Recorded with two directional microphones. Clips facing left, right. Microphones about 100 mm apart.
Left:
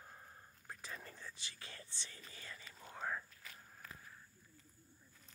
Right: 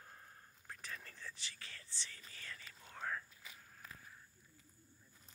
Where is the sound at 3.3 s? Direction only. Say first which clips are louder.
Left 1 dB; 10° right (ahead or behind).